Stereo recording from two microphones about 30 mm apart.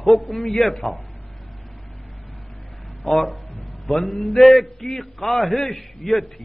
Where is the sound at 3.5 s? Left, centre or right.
Left.